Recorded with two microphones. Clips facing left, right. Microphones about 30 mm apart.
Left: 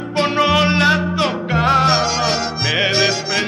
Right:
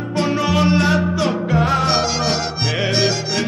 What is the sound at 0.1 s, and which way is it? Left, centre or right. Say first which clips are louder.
Music: left 3 dB; left.